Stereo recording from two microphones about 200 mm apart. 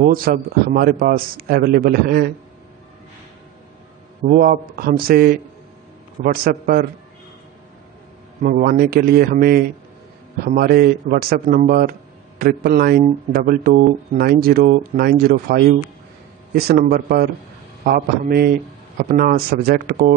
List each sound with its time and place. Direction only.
0.0 s speech: 45° right (ahead or behind)
4.2 s speech: 45° right (ahead or behind)
8.4 s speech: 45° right (ahead or behind)